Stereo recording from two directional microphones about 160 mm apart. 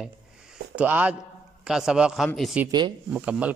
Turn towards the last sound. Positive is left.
turn(degrees=-10)  # may be behind; listen again after turning